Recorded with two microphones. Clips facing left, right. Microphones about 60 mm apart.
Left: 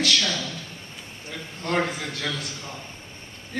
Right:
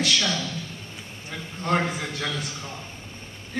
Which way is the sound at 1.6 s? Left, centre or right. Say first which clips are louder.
Right 1 dB; centre.